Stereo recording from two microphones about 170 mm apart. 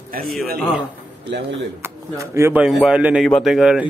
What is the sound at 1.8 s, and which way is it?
Speech, 15° right (ahead or behind).